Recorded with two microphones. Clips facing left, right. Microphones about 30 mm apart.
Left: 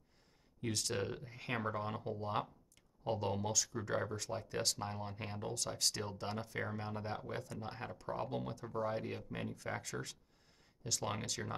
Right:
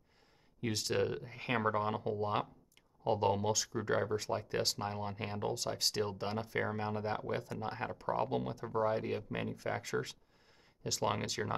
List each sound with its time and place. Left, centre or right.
0.6 s speech: centre